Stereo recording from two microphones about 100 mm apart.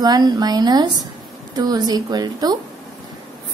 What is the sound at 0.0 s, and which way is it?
A woman's voice, 40° right (ahead or behind).